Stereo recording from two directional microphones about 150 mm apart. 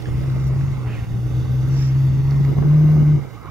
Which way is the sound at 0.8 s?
Centre (ahead or behind).